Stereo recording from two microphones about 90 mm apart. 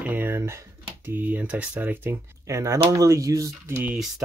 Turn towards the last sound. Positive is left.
turn(degrees=-20)  # may be behind; listen again after turning